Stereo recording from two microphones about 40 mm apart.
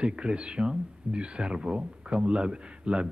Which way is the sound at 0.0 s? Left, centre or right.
Right.